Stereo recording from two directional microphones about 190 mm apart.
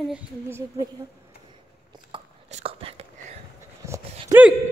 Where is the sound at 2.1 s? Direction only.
30° right (ahead or behind).